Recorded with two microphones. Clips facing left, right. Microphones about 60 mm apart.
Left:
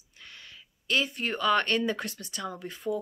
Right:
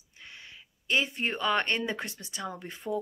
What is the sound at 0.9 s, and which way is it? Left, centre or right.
Speech, right.